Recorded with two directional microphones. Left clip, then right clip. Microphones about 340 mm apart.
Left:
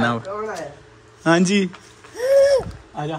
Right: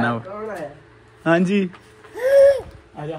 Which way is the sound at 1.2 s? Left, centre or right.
Centre.